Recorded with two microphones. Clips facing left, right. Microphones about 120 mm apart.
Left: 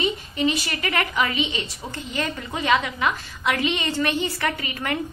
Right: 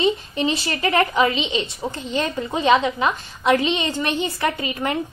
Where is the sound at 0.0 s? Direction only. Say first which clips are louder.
Right 3 dB; 30° right (ahead or behind).